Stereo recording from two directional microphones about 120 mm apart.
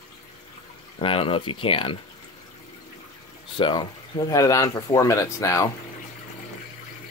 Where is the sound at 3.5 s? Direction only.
45° left (ahead or behind).